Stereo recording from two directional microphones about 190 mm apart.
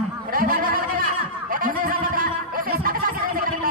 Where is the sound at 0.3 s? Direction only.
50° right (ahead or behind).